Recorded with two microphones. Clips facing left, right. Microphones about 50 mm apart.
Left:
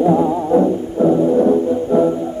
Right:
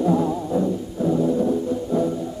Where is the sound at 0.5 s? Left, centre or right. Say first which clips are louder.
Left 8 dB; left.